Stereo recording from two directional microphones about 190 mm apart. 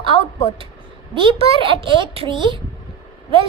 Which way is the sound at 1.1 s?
25° right (ahead or behind).